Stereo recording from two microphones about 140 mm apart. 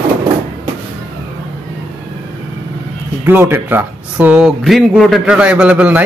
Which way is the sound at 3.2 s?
15° right (ahead or behind).